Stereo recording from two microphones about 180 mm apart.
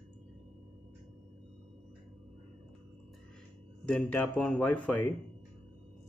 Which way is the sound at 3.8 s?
10° left (ahead or behind).